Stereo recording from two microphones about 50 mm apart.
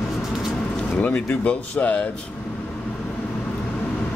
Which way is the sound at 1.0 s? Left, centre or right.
Left.